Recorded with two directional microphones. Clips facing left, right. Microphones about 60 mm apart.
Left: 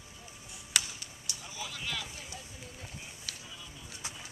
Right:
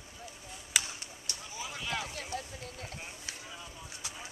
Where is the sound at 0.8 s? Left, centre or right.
Right.